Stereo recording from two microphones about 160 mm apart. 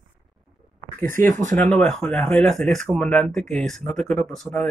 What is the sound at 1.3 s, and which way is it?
Speech, 50° right (ahead or behind).